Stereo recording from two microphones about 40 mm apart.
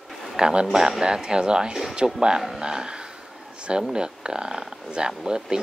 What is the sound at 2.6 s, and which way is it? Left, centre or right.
Speech, centre.